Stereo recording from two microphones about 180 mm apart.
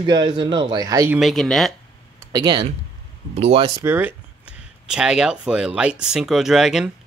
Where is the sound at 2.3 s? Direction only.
20° right (ahead or behind).